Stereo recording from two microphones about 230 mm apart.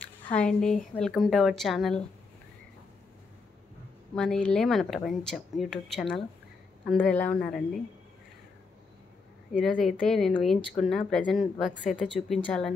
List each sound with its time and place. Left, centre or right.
0.4 s speech: centre
4.1 s speech: centre
9.5 s speech: centre